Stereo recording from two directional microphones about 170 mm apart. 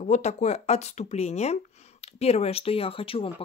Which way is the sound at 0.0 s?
45° left (ahead or behind).